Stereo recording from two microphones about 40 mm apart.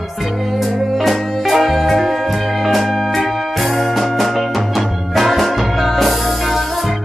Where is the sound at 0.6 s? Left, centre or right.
Centre.